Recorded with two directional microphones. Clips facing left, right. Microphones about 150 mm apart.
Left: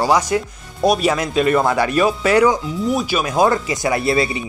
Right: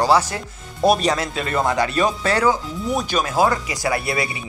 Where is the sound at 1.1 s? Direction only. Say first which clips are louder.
Left 6 dB; 15° left (ahead or behind).